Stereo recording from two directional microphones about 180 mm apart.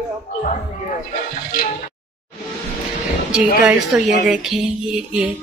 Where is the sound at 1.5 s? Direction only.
50° left (ahead or behind).